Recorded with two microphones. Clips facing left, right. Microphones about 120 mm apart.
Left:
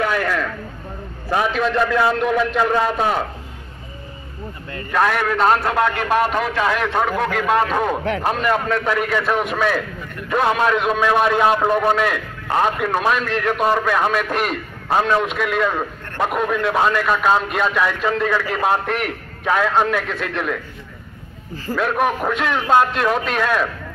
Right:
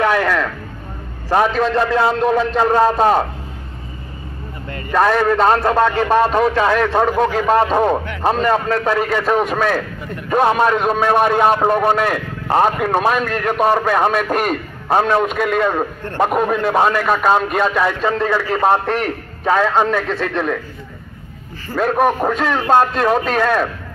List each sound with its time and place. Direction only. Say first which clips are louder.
0.0 s a sound: right 4 dB; 70° right (ahead or behind)
1.3 s speech: right 4 dB; 40° right (ahead or behind)
4.9 s a man's voice: right 4 dB; 30° right (ahead or behind)
21.7 s speech: right 4 dB; 40° right (ahead or behind)